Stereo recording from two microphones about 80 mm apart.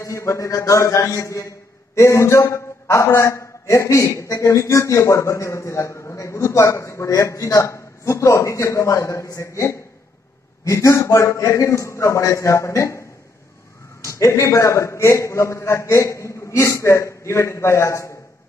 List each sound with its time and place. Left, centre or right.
0.0 s a man's voice: left
14.0 s a man's voice: left